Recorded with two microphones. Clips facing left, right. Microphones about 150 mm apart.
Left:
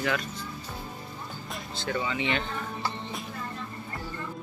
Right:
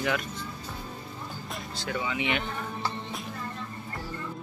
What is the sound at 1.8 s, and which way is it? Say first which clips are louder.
Speech: left 1 dB; 5° right (ahead or behind).